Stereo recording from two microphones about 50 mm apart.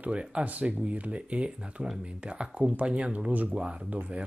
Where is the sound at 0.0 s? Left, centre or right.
Right.